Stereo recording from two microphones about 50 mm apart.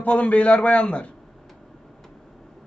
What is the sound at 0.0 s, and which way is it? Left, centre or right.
A man's voice, left.